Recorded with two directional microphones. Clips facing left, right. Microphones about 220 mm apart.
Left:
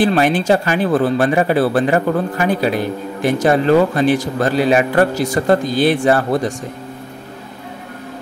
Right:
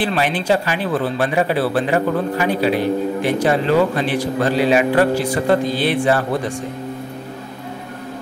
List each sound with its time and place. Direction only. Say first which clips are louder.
0.0 s speech: left 5 dB; 45° left (ahead or behind)